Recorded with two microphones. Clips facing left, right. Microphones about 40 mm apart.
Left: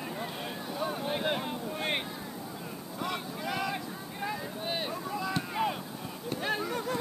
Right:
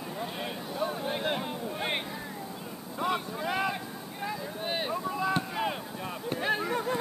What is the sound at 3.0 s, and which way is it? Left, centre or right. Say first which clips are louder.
Boat: right 5 dB; centre.